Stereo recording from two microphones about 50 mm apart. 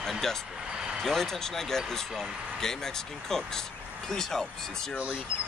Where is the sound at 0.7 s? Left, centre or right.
Centre.